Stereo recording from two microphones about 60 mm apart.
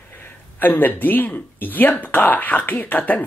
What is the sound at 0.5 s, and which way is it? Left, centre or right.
Speech, left.